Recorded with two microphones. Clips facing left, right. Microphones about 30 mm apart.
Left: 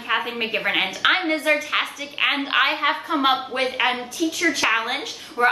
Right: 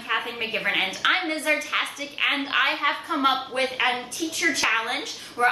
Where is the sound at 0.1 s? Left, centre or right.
Centre.